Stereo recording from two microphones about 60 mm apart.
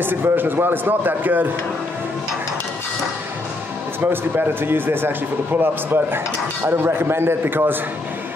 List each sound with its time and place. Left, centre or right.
0.0 s a man's voice: right
4.0 s a man's voice: right